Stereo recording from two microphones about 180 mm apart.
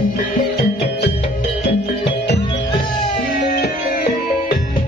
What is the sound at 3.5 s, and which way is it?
Music, 60° left (ahead or behind).